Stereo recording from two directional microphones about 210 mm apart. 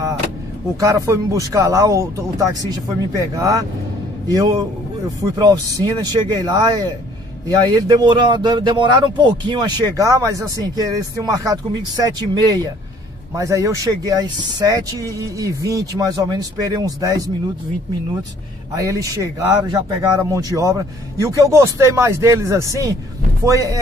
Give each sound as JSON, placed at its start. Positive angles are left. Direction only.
{"t": 0.7, "sound": "speech", "side_deg": -15}
{"t": 18.8, "sound": "speech", "side_deg": -15}